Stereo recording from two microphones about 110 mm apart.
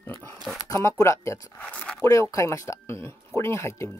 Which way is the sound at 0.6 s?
30° left (ahead or behind).